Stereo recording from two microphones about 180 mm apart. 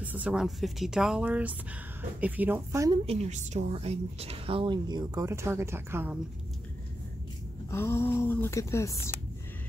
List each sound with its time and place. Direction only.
0.0 s speech: 10° right (ahead or behind)
3.1 s a woman's voice: 40° right (ahead or behind); by 6.1 s 15° right (ahead or behind)
7.7 s speech: 15° left (ahead or behind)